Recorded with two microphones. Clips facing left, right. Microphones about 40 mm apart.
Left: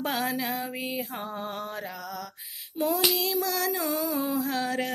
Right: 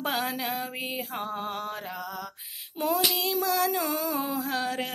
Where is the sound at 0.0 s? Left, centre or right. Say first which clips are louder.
Left 1 dB; right.